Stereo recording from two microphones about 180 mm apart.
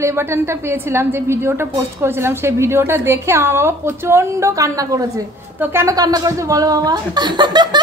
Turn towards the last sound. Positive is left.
turn(degrees=-25)  # may be behind; listen again after turning